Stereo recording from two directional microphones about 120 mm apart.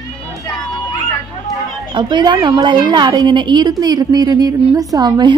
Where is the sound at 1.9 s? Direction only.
40° right (ahead or behind).